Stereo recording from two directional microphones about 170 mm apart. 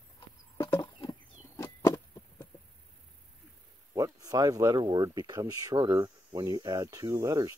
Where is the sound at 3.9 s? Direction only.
20° right (ahead or behind).